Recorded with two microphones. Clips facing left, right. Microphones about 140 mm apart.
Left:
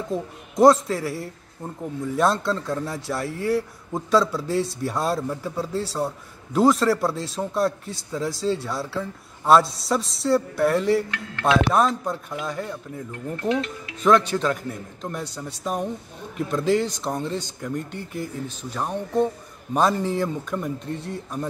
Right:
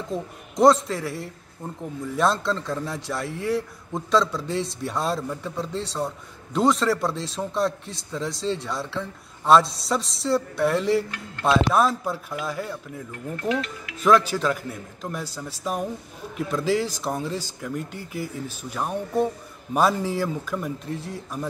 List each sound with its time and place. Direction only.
0.1 s a man's voice: centre (ahead or behind)
13.1 s speech: 30° left (ahead or behind)
14.0 s a man's voice: 5° right (ahead or behind)